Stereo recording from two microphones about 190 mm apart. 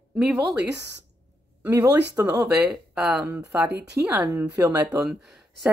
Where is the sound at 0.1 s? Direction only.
5° right (ahead or behind).